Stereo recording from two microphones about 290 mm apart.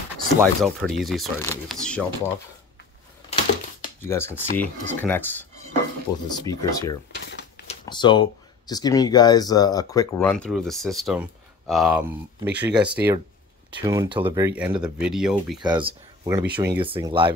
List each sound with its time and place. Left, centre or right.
0.4 s speech: centre
3.8 s speech: centre
7.2 s a sound: left
7.6 s speech: centre
15.6 s speech: centre